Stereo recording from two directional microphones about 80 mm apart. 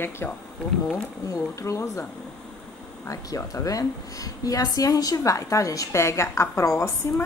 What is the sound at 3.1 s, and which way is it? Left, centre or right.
A woman's voice, left.